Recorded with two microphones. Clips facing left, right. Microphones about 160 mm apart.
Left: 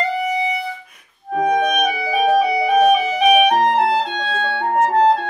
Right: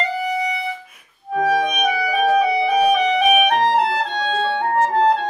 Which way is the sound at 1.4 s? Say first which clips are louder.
Left 1 dB; 20° left (ahead or behind).